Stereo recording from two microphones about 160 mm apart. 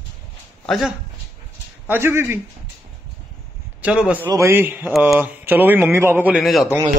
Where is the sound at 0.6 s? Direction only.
Centre (ahead or behind).